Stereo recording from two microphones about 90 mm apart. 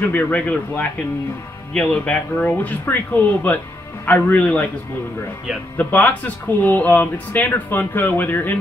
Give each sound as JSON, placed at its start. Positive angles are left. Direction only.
{"t": 0.0, "sound": "speech", "side_deg": 20}
{"t": 5.8, "sound": "speech", "side_deg": 20}